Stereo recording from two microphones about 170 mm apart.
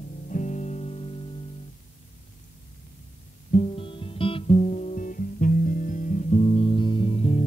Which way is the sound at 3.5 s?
35° left (ahead or behind).